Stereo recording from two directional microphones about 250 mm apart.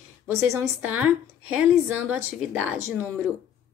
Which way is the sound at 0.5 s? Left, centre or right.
Centre.